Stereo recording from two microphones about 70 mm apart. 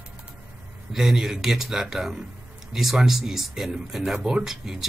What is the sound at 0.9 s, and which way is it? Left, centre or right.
Speech, centre.